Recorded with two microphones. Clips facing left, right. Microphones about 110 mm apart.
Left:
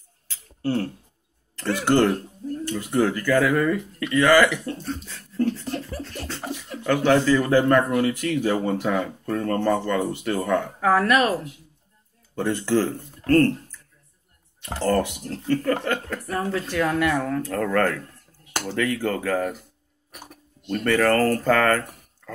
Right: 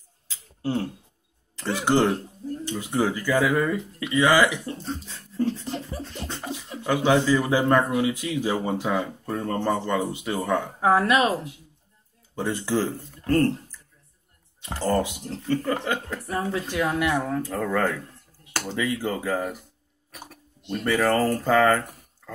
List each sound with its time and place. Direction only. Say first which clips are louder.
0.3 s a sound: left 2 dB; 15° right (ahead or behind)
1.6 s speech: left 2 dB; 15° right (ahead or behind)
14.9 s speech: left 2 dB; 15° right (ahead or behind)
20.7 s speech: left 2 dB; 10° right (ahead or behind)